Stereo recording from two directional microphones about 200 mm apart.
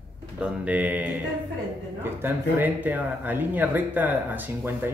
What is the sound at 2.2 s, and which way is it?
Speech, 10° right (ahead or behind).